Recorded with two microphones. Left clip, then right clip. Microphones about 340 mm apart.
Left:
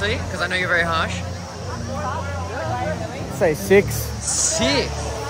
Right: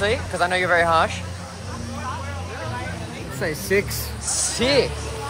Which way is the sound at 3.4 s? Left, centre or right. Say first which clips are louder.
Left 6 dB; centre.